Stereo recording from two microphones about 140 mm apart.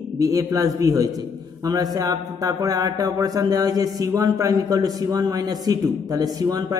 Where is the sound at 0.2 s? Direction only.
25° right (ahead or behind).